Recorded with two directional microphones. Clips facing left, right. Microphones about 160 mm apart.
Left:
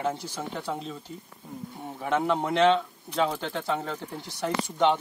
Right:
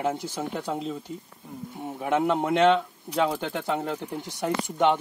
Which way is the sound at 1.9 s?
10° right (ahead or behind).